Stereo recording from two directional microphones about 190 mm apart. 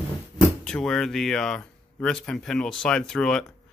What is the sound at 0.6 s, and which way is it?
Speech, 5° left (ahead or behind).